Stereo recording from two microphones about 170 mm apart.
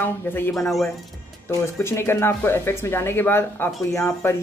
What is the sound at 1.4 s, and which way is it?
A woman's voice, 15° left (ahead or behind).